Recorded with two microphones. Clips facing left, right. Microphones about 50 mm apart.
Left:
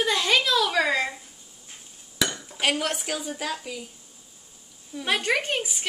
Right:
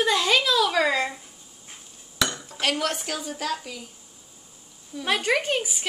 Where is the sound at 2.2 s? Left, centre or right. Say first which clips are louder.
Even; centre.